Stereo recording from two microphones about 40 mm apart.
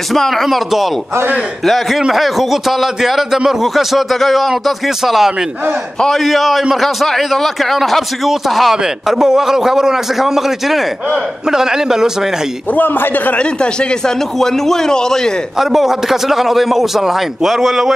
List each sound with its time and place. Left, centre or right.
0.1 s a man's voice: centre
12.7 s a man's voice: left
13.4 s speech: left
14.4 s a man's voice: centre
15.5 s a man's voice: centre